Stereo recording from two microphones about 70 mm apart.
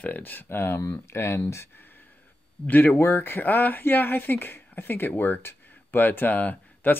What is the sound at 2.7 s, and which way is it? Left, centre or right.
Speech, left.